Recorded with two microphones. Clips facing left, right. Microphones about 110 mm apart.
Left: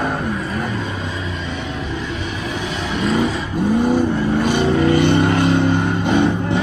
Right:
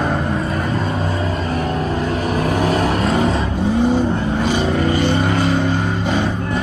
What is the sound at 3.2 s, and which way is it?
Vehicle, 30° right (ahead or behind).